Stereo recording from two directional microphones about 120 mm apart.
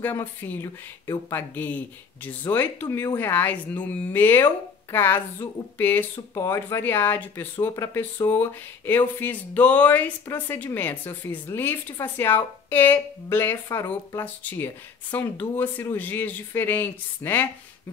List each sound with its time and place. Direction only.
0.0 s speech: 20° left (ahead or behind)
7.5 s speech: 30° left (ahead or behind)